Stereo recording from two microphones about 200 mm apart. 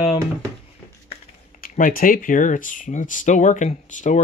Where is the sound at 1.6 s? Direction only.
45° left (ahead or behind).